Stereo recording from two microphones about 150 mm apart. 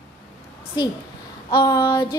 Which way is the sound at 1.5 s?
25° left (ahead or behind).